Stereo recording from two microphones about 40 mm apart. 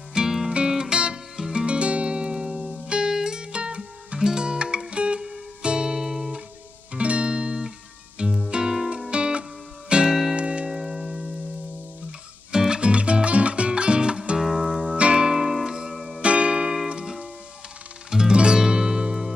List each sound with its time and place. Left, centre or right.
0.2 s music: right
6.0 s music: centre
6.9 s music: right
10.7 s music: centre
12.4 s music: right
14.4 s music: centre
15.9 s music: centre
16.2 s music: right
18.1 s music: right